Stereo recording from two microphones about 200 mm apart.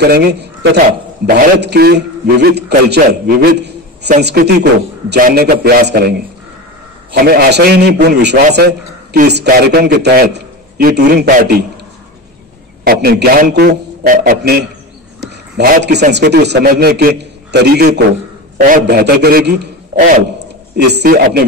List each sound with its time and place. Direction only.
0.0 s a man's voice: 55° right (ahead or behind)
12.8 s a man's voice: 50° right (ahead or behind)
20.7 s a man's voice: 55° right (ahead or behind)